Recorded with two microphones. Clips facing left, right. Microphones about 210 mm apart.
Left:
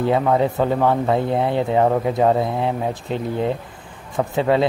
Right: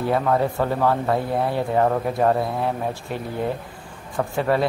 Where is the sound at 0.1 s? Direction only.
15° left (ahead or behind).